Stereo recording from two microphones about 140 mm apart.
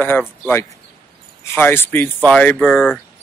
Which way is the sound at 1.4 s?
15° left (ahead or behind).